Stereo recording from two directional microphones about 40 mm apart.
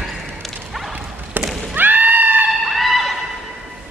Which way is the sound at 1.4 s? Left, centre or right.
Right.